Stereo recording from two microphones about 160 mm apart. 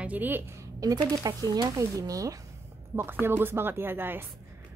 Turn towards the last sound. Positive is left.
turn(degrees=-15)  # may be behind; listen again after turning